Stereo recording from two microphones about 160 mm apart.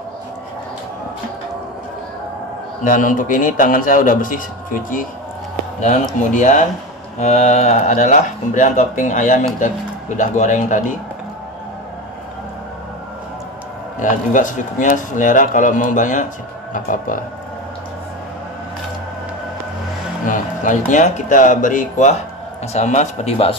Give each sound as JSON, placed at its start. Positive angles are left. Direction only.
{"t": 2.8, "sound": "a man's voice", "side_deg": 55}
{"t": 6.3, "sound": "speech", "side_deg": 50}
{"t": 13.9, "sound": "a man's voice", "side_deg": 55}
{"t": 20.2, "sound": "speech", "side_deg": 50}